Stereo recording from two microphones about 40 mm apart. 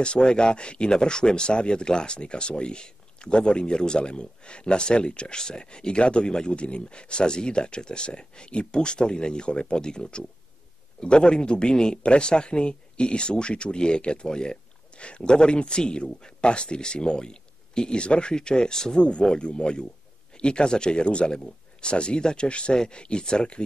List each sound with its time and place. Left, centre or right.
0.0 s speech: left
18.9 s speech: left